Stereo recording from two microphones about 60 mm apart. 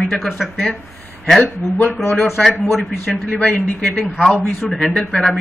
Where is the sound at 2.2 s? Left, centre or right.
Centre.